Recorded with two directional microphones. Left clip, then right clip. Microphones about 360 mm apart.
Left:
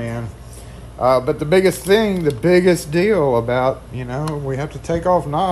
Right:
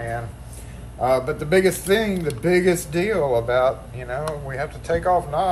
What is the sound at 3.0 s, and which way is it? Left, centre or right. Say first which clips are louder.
Speech: left 5 dB; left.